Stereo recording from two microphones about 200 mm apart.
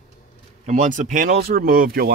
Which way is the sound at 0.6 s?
40° right (ahead or behind).